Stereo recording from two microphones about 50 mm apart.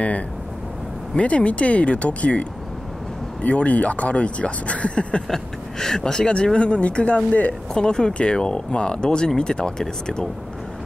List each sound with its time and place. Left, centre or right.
1.1 s speech: left
3.4 s speech: left
5.3 s speech: centre; by 7.5 s left
7.7 s speech: centre